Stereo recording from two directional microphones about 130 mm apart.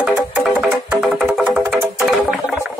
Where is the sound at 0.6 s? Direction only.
5° right (ahead or behind).